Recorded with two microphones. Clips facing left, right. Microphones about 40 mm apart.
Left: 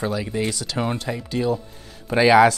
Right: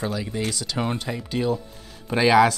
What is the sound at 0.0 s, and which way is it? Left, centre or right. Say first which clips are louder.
Speech: left 3 dB; centre.